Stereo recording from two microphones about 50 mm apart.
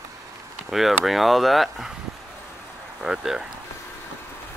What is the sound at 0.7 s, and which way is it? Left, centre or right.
Speech, centre.